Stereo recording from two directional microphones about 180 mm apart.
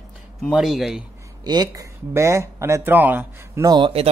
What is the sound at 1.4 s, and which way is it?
Speech, 20° right (ahead or behind).